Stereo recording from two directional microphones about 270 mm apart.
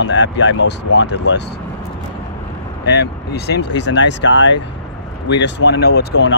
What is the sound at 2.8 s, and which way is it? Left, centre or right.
Speech, left.